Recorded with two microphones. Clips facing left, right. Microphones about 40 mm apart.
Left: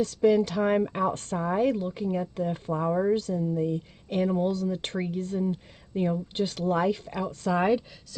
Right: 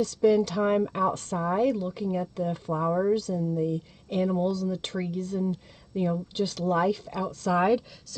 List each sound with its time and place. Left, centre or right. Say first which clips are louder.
0.0 s a woman's voice: even; centre
2.7 s a woman's voice: even; centre
3.2 s a woman's voice: even; left
4.5 s speech: even; left
7.5 s a woman's voice: right 1 dB; centre